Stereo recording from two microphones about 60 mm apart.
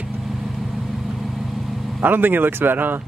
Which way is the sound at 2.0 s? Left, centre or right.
Right.